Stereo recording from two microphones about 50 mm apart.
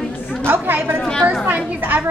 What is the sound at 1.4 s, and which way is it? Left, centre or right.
Speech, right.